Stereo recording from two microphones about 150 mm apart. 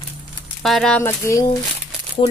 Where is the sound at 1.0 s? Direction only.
20° left (ahead or behind).